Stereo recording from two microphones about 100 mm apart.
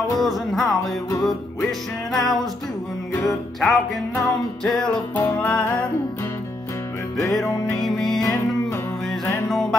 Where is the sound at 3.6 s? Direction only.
Centre (ahead or behind).